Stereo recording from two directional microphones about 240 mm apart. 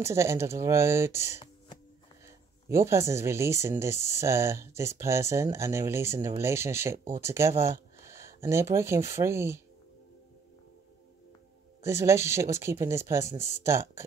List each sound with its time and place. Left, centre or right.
0.0 s speech: centre
2.2 s speech: centre
11.8 s speech: centre